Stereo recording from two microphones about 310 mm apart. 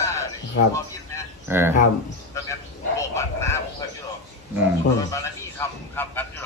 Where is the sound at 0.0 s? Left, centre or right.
Centre.